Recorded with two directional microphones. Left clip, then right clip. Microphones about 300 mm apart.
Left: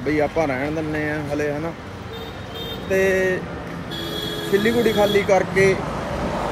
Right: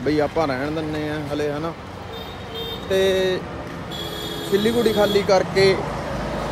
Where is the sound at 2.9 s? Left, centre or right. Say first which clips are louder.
Even; centre.